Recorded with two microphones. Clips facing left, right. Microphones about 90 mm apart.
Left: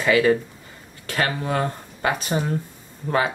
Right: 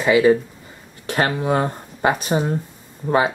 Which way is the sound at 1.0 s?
30° right (ahead or behind).